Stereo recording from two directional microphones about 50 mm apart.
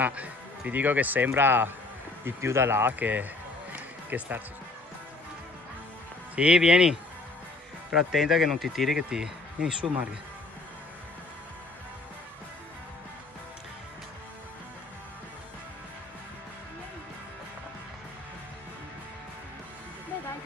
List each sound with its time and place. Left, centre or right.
0.0 s speech: right
2.2 s speech: right
3.0 s speech: right
3.7 s music: right
6.3 s speech: right